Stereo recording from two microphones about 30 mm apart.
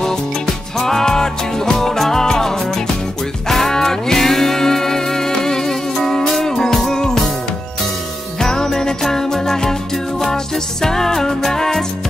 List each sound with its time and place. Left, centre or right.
0.7 s music: centre
8.4 s music: centre